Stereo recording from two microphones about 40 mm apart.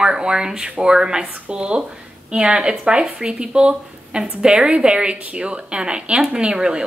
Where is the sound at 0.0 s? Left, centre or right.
Centre.